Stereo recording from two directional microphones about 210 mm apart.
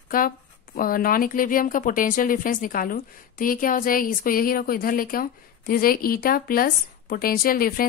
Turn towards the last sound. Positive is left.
turn(degrees=45)  # may be behind; listen again after turning